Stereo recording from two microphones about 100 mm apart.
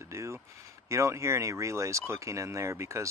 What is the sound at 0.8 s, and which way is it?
Speech, 30° right (ahead or behind).